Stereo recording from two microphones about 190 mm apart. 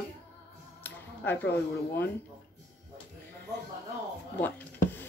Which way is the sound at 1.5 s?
10° left (ahead or behind).